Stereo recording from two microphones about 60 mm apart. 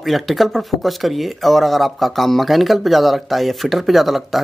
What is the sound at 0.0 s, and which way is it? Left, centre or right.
Speech, centre.